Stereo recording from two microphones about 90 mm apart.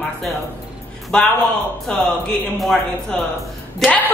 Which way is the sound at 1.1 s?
10° left (ahead or behind).